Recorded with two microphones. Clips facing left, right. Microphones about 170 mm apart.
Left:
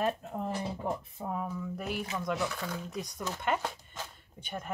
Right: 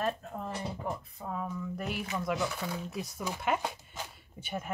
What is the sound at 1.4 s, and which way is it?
Speech, 5° left (ahead or behind).